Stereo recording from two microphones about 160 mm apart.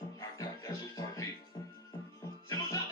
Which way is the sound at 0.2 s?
20° left (ahead or behind).